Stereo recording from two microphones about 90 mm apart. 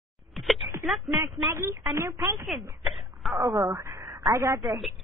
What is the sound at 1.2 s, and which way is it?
Speech, 25° right (ahead or behind).